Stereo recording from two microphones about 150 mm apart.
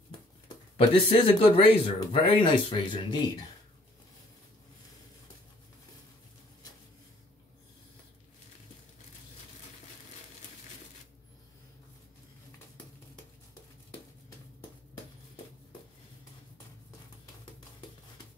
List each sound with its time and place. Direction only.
0.7 s speech: 35° left (ahead or behind)